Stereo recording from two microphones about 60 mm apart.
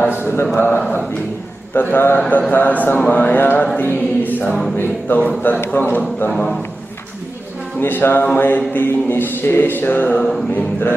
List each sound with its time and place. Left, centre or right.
0.2 s a sound: left
0.6 s speech: left
1.7 s music: left
2.5 s speech: left
3.7 s music: left
6.3 s a man's voice: centre
7.8 s music: left